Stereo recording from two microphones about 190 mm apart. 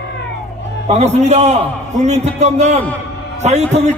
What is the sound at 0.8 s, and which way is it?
A man's voice, 35° right (ahead or behind).